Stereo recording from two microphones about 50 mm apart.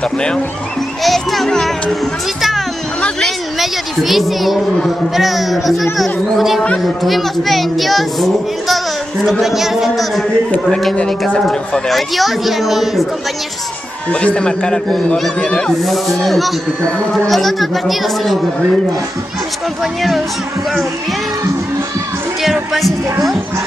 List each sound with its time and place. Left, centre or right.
1.0 s a child's voice: centre
3.5 s a child's voice: centre
14.2 s a man's voice: left
15.8 s a child's voice: centre
19.8 s a child's voice: centre
22.4 s music: centre